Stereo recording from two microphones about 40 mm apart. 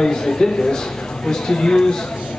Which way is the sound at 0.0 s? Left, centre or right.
Centre.